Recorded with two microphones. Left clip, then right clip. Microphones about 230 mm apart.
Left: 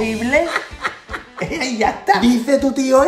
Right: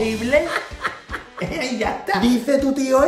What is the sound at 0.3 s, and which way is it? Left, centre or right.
Music, centre.